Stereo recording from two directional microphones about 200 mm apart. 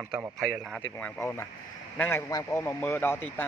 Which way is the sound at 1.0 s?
10° left (ahead or behind).